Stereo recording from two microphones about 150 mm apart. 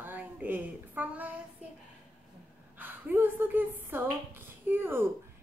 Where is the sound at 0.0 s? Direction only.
10° right (ahead or behind).